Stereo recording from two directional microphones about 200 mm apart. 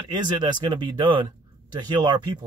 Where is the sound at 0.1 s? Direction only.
20° right (ahead or behind).